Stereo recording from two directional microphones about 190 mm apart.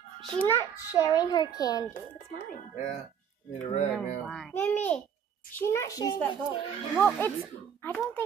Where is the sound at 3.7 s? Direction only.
35° left (ahead or behind).